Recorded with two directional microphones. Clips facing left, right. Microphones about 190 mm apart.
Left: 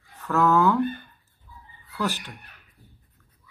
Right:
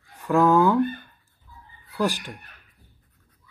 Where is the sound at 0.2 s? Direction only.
10° right (ahead or behind).